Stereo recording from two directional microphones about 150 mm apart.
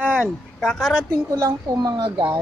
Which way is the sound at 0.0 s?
5° right (ahead or behind).